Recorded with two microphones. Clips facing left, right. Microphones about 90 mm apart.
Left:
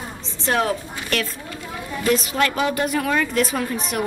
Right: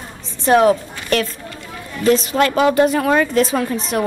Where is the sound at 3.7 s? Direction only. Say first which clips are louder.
Right 5 dB; 25° right (ahead or behind).